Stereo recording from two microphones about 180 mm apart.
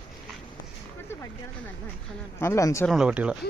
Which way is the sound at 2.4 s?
15° left (ahead or behind).